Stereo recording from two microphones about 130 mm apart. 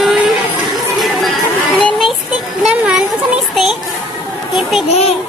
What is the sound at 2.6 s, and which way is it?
Children playing, 5° right (ahead or behind).